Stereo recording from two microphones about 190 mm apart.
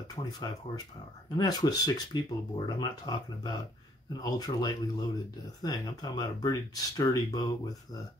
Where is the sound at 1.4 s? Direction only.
20° left (ahead or behind).